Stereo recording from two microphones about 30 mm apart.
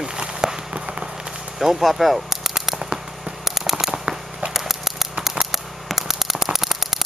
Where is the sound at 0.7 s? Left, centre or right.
Right.